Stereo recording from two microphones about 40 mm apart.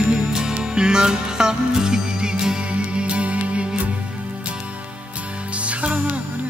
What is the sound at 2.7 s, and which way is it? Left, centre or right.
Music, right.